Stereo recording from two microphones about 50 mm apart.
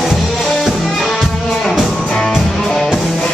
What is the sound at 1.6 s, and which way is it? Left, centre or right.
Music, centre.